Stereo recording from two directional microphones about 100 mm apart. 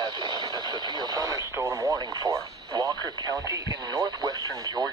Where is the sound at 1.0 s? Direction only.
35° right (ahead or behind).